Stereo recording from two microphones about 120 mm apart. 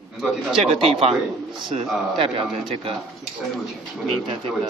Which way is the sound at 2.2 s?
50° right (ahead or behind).